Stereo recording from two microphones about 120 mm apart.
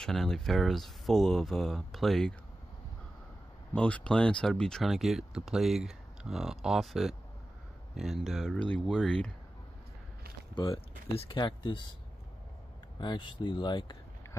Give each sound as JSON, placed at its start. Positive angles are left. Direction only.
{"t": 0.0, "sound": "speech", "side_deg": 5}
{"t": 3.7, "sound": "speech", "side_deg": 10}
{"t": 11.1, "sound": "speech", "side_deg": 40}
{"t": 13.0, "sound": "speech", "side_deg": 40}